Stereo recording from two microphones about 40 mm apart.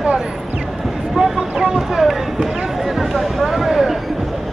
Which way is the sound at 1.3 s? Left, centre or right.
Centre.